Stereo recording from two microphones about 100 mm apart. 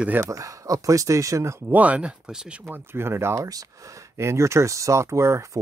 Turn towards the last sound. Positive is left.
turn(degrees=-30)  # may be behind; listen again after turning